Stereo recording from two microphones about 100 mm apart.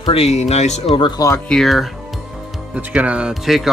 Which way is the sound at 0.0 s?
80° left.